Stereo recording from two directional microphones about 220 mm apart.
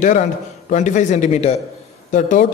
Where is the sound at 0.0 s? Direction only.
35° left (ahead or behind).